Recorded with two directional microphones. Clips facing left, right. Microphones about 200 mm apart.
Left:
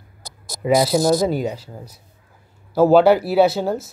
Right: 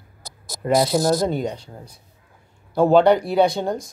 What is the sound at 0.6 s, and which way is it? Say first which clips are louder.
Speech: left 2 dB; 5° left (ahead or behind).